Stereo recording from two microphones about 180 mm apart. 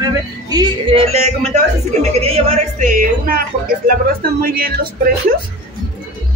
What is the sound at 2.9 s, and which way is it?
Speech, 50° right (ahead or behind).